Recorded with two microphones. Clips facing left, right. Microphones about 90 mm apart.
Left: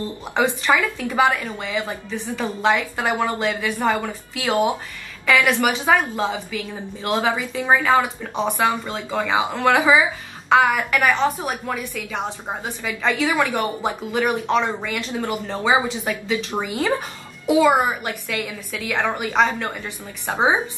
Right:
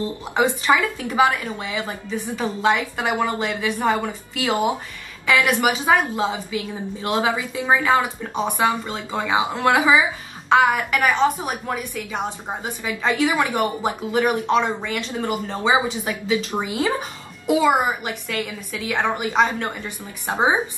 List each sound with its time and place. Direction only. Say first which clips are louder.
0.0 s a woman's voice: right 1 dB; 15° right (ahead or behind)
16.6 s a woman's voice: right 1 dB; 15° right (ahead or behind)
17.5 s a woman's voice: left 1 dB; centre (ahead or behind)